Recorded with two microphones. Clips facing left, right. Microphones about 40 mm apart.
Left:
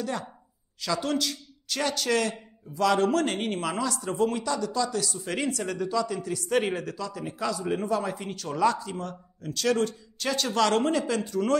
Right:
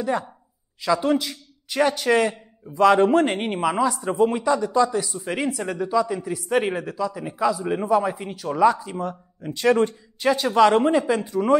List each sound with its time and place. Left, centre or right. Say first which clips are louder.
0.0 s a man's voice: right 7 dB; centre